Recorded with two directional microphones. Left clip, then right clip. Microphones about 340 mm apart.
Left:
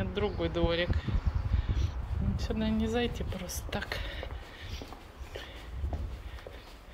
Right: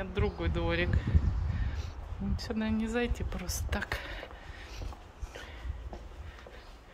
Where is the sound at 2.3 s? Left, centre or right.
Centre.